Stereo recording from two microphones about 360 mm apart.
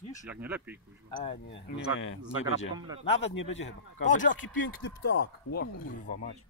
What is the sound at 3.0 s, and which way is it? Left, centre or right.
Speech, left.